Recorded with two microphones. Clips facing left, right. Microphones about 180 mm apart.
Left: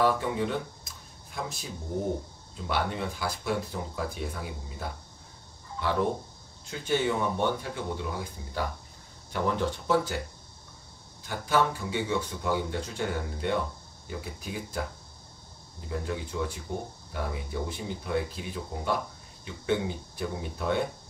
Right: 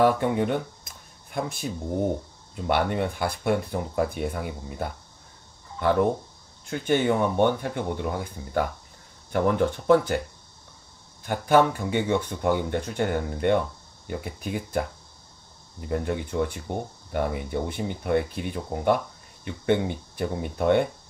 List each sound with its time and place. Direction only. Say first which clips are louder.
0.0 s speech: right 5 dB; 60° right (ahead or behind)
6.6 s speech: right 4 dB; 55° right (ahead or behind)
11.2 s speech: right 7 dB; 60° right (ahead or behind)
15.9 s speech: right 6 dB; 55° right (ahead or behind)
16.7 s speech: right 5 dB; 70° right (ahead or behind)